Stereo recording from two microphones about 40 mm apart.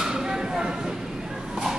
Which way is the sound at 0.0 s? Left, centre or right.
Centre.